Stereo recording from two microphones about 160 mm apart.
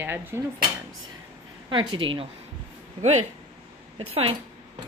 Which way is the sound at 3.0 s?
45° right (ahead or behind).